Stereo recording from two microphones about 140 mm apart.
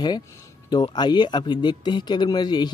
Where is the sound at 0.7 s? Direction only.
30° left (ahead or behind).